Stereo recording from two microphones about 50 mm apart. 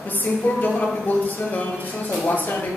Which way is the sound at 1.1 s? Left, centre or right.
Left.